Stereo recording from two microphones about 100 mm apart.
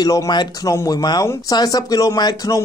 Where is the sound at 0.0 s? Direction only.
45° left (ahead or behind).